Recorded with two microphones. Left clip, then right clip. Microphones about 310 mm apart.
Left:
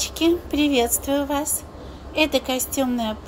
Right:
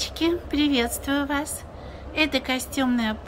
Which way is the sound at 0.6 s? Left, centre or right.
Right.